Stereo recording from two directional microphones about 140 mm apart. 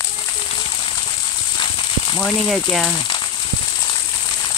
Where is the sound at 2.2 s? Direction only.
5° left (ahead or behind).